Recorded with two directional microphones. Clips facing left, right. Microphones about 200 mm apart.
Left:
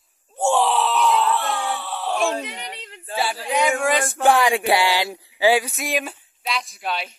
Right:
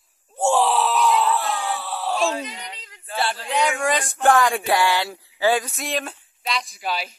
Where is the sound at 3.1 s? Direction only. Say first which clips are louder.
Left 1 dB; 10° left (ahead or behind).